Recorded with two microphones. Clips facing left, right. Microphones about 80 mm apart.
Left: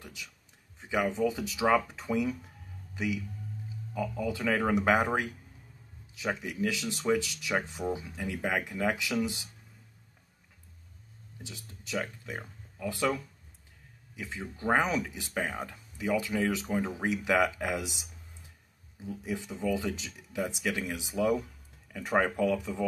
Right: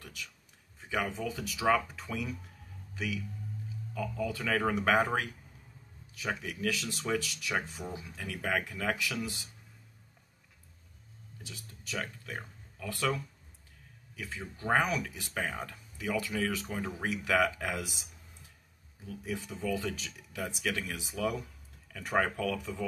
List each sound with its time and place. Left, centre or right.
0.0 s a sound: centre
0.7 s speech: centre
3.9 s speech: centre
11.4 s speech: left
19.0 s speech: left